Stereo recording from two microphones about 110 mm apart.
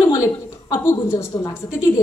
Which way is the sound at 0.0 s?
30° left (ahead or behind).